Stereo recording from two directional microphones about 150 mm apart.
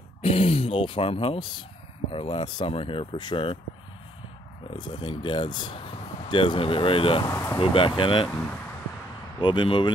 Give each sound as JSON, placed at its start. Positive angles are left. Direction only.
{"t": 0.2, "sound": "speech", "side_deg": 40}
{"t": 4.7, "sound": "speech", "side_deg": 30}
{"t": 7.2, "sound": "speech", "side_deg": 20}
{"t": 7.7, "sound": "speech", "side_deg": 35}
{"t": 9.4, "sound": "speech", "side_deg": 30}